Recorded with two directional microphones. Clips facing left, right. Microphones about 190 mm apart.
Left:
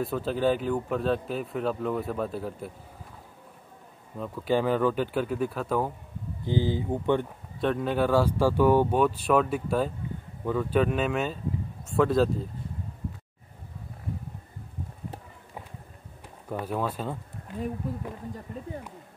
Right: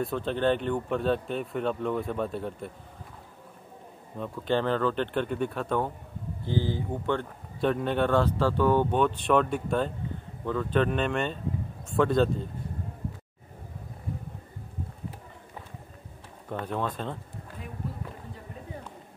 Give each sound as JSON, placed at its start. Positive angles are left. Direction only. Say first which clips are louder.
{"t": 0.0, "sound": "speech", "louder": "left 1 dB", "side_deg": 5}
{"t": 4.2, "sound": "speech", "louder": "left 1 dB", "side_deg": 10}
{"t": 6.4, "sound": "speech", "louder": "left 2 dB", "side_deg": 15}
{"t": 7.6, "sound": "speech", "louder": "even", "side_deg": 0}
{"t": 16.4, "sound": "speech", "louder": "left 1 dB", "side_deg": 5}